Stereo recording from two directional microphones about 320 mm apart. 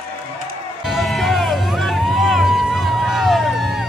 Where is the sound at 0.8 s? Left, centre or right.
Centre.